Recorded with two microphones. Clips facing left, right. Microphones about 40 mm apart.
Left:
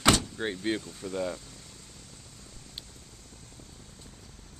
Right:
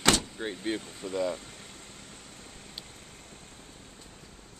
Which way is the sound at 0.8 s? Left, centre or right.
Right.